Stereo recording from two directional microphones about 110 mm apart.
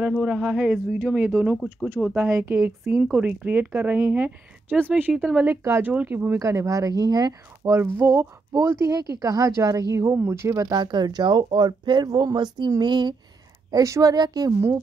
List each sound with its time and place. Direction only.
0.1 s speech: 10° right (ahead or behind)
1.6 s speech: 5° left (ahead or behind)
2.3 s speech: 25° right (ahead or behind)
2.8 s speech: centre (ahead or behind)
3.2 s speech: 15° right (ahead or behind)
5.1 s speech: 5° right (ahead or behind)
5.4 s speech: 25° right (ahead or behind)
6.4 s speech: 30° right (ahead or behind)
10.8 s speech: 40° right (ahead or behind)
13.7 s speech: 30° right (ahead or behind)